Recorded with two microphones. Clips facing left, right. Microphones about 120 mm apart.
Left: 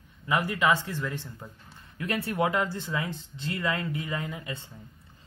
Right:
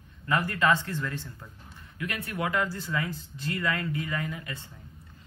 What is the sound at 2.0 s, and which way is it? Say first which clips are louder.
Speech: left 5 dB; 30° left (ahead or behind).